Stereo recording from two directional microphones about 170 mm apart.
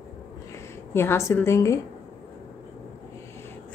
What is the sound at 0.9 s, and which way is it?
Speech, 15° left (ahead or behind).